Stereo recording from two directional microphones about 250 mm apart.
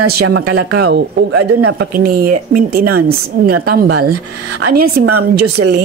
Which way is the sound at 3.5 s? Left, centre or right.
Right.